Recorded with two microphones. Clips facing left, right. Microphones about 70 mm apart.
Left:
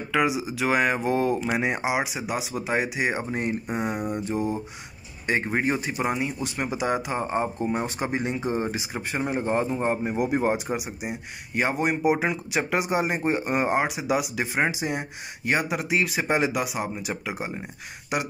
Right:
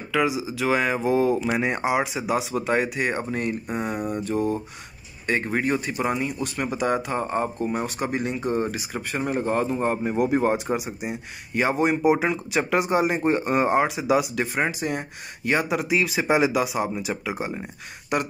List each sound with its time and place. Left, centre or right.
0.4 s speech: centre
1.4 s speech: centre
14.4 s speech: centre